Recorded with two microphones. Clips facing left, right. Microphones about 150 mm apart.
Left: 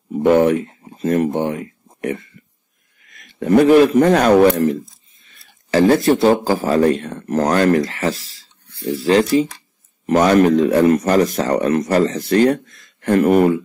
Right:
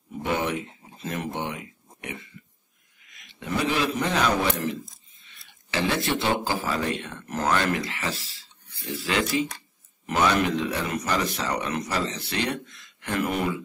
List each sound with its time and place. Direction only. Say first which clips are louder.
0.2 s a man's voice: left 14 dB; 50° left (ahead or behind)